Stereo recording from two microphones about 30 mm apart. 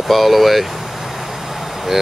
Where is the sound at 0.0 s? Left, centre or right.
Centre.